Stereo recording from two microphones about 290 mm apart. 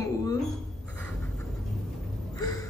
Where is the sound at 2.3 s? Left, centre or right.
Centre.